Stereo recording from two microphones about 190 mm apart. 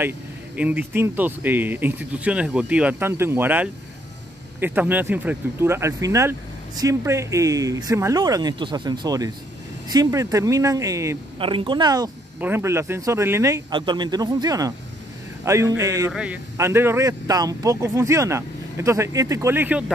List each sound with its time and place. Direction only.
0.6 s speech: 10° right (ahead or behind)
11.3 s speech: 25° right (ahead or behind)
16.1 s a man's voice: 5° right (ahead or behind)